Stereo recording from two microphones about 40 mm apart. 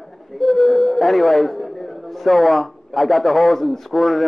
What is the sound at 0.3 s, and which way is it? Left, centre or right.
A man's voice, centre.